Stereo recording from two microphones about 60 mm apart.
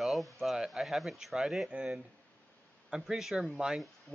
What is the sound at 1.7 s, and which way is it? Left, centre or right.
Speech, centre.